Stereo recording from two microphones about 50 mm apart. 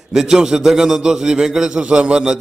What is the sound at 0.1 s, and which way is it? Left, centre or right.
A man's voice, centre.